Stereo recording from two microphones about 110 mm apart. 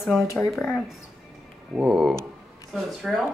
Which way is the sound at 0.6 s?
15° left (ahead or behind).